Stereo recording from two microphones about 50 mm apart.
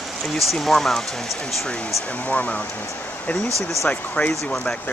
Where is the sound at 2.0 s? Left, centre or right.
Left.